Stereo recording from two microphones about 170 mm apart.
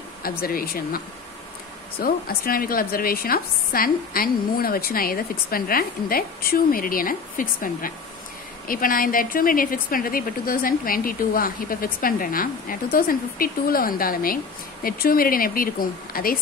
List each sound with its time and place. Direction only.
0.2 s speech: 60° left (ahead or behind)